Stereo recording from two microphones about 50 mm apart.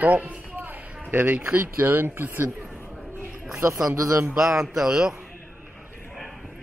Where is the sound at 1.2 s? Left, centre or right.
Right.